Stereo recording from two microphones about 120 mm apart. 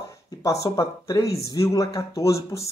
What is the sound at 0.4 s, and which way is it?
Speech, 30° left (ahead or behind).